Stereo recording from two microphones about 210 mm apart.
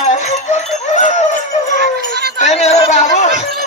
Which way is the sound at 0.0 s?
35° left (ahead or behind).